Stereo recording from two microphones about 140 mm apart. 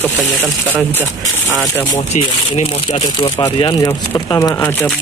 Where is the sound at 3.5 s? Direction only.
35° left (ahead or behind).